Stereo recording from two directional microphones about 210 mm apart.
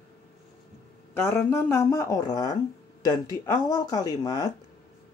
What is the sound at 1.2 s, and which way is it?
Speech, 10° left (ahead or behind).